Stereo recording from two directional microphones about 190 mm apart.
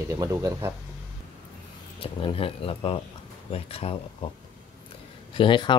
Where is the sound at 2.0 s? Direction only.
30° left (ahead or behind).